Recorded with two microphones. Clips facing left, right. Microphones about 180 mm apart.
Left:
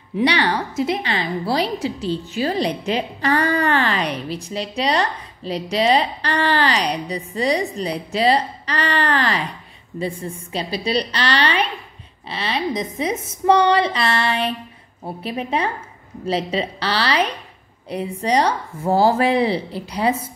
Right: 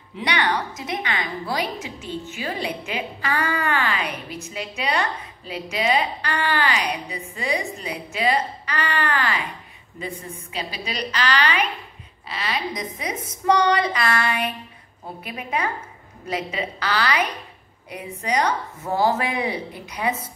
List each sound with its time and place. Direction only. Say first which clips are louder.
0.2 s a woman's voice: left 5 dB; 30° left (ahead or behind)
11.0 s a woman's voice: even; 35° left (ahead or behind)